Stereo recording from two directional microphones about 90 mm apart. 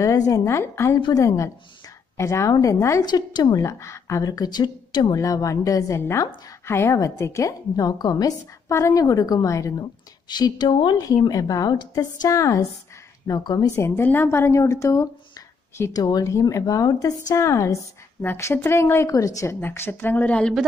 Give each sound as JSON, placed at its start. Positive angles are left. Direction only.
{"t": 0.0, "sound": "a woman's voice", "side_deg": 40}
{"t": 3.1, "sound": "a woman's voice", "side_deg": 50}
{"t": 3.6, "sound": "a woman's voice", "side_deg": 35}
{"t": 10.3, "sound": "speech", "side_deg": 55}
{"t": 11.0, "sound": "a woman's voice", "side_deg": 40}
{"t": 13.3, "sound": "a woman's voice", "side_deg": 50}
{"t": 13.7, "sound": "a woman's voice", "side_deg": 30}
{"t": 19.6, "sound": "speech", "side_deg": 25}